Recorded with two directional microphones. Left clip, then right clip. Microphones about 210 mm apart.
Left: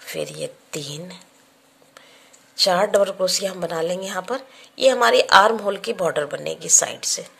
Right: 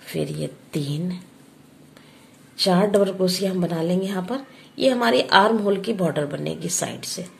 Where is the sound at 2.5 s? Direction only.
30° left (ahead or behind).